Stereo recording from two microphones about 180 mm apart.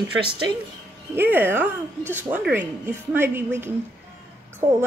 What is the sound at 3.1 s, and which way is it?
Speech, 10° right (ahead or behind).